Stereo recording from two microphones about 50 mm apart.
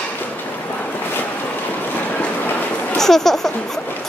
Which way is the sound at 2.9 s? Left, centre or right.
Centre.